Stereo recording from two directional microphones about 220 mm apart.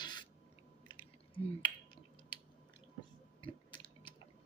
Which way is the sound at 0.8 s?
20° left (ahead or behind).